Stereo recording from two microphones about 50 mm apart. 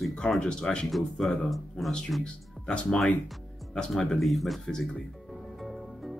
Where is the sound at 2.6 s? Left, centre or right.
Centre.